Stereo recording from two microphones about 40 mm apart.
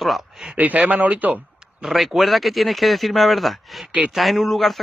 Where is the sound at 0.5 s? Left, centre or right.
Right.